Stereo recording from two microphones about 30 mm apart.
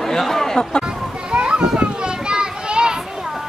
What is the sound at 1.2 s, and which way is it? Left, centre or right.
Children playing, right.